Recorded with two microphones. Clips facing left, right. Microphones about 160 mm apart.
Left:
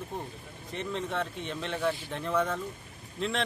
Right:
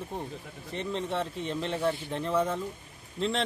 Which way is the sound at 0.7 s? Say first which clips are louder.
Right 1 dB; 30° right (ahead or behind).